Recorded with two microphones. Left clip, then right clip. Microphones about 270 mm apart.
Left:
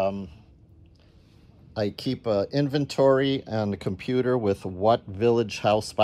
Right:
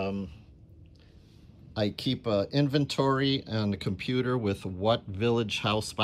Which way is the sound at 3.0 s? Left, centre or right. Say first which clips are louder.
Left 9 dB; centre.